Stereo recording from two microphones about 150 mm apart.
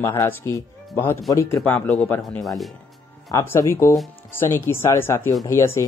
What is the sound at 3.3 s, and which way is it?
Speech, 20° left (ahead or behind).